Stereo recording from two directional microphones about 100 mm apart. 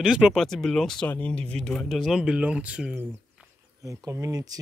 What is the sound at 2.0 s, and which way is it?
Speech, 5° right (ahead or behind).